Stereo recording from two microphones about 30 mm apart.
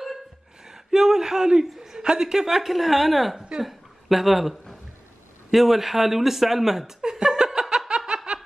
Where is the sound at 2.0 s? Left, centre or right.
Right.